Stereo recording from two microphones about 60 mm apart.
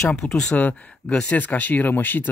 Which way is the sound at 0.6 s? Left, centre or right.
Left.